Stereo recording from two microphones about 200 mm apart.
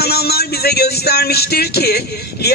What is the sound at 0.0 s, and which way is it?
Speech, 50° left (ahead or behind).